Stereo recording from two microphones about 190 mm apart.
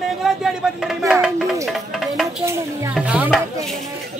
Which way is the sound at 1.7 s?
Centre (ahead or behind).